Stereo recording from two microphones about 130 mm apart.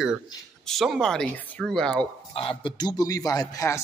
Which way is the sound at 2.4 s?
40° left (ahead or behind).